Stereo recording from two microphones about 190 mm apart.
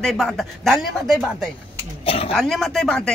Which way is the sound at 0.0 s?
Centre (ahead or behind).